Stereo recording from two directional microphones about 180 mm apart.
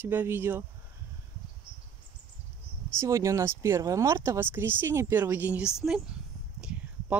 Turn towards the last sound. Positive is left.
turn(degrees=-5)  # may be behind; listen again after turning